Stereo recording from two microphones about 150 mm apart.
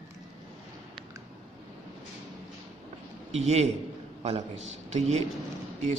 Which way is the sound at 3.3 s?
45° right (ahead or behind).